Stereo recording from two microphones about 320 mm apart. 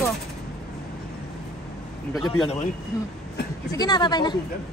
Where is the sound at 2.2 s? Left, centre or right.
Centre.